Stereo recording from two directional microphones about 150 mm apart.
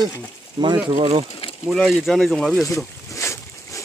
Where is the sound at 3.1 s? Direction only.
20° left (ahead or behind).